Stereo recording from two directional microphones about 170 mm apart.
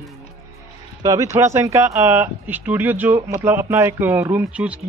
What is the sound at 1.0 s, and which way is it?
Speech, 20° right (ahead or behind).